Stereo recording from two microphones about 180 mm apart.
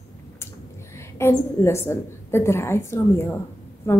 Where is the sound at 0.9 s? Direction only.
15° left (ahead or behind).